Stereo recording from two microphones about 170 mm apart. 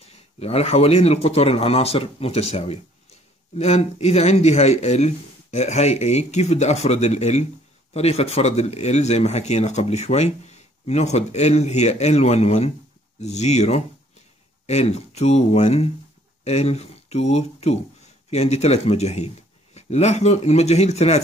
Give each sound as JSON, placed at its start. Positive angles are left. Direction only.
{"t": 0.4, "sound": "speech", "side_deg": 35}